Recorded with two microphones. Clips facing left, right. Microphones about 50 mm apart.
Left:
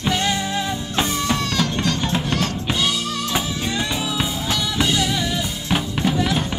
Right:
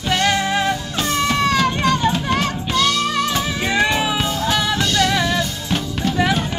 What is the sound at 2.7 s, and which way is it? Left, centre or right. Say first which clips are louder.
Music: right 5 dB; centre.